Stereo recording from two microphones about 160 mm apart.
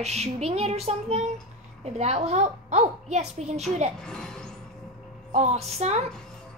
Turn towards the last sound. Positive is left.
turn(degrees=-45)  # may be behind; listen again after turning